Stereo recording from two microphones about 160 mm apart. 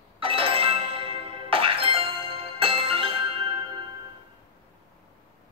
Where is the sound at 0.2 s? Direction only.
35° right (ahead or behind).